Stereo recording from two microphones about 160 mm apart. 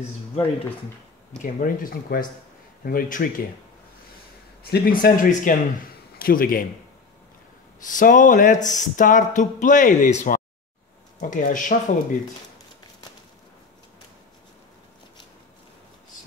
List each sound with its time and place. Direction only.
1.4 s speech: 60° left (ahead or behind)
4.6 s a man's voice: 75° left (ahead or behind)
7.8 s speech: 55° left (ahead or behind)